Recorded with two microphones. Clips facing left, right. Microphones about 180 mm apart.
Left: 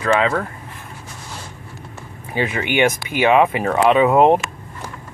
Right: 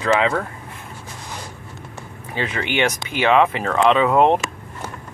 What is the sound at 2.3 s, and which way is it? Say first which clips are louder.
Speech: left 3 dB; 10° left (ahead or behind).